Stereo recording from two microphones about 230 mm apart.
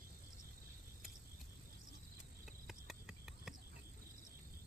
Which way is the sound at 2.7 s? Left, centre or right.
Centre.